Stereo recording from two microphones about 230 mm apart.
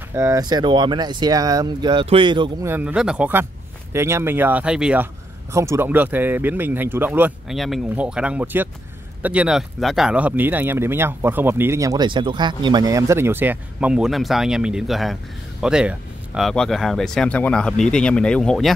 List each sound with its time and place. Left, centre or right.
0.1 s speech: centre
2.7 s speech: centre